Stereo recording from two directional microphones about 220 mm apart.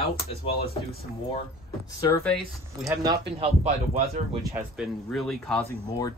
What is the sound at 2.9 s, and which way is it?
Speech, 15° right (ahead or behind).